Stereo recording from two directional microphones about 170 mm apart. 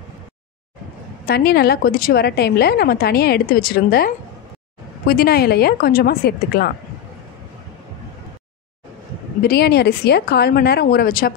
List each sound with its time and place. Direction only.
1.2 s a woman's voice: 65° left (ahead or behind)
9.4 s a woman's voice: 70° left (ahead or behind)